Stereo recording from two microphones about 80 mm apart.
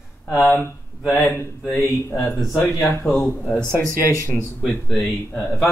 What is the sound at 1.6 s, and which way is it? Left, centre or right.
Speech, centre.